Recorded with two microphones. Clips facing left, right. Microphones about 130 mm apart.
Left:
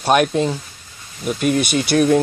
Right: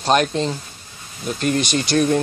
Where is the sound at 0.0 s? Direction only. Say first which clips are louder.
Left 2 dB; 10° left (ahead or behind).